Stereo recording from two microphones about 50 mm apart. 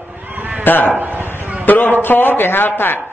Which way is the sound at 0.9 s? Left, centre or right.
Right.